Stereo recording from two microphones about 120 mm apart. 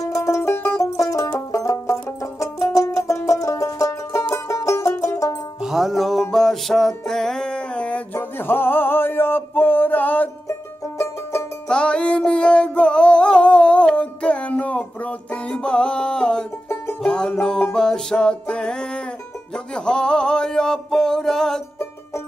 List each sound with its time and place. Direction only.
0.0 s music: 25° left (ahead or behind)
5.6 s music: 5° right (ahead or behind); by 10.3 s 15° left (ahead or behind)
11.7 s music: 10° left (ahead or behind)